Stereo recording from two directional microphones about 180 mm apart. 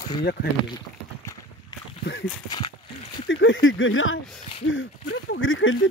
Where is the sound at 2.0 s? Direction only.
70° left (ahead or behind).